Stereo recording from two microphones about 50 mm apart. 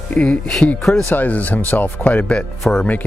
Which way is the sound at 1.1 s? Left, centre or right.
Left.